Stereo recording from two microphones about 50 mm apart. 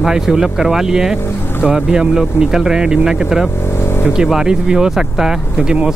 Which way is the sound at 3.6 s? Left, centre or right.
Left.